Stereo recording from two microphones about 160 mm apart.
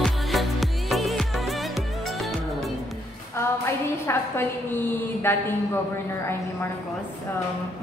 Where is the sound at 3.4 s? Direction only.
15° left (ahead or behind).